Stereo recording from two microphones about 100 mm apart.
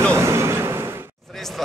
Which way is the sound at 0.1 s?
25° right (ahead or behind).